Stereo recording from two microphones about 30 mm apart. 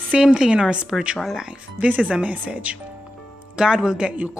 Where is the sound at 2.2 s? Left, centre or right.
Right.